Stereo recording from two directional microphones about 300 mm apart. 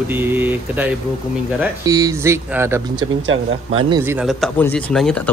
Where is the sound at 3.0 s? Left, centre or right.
Right.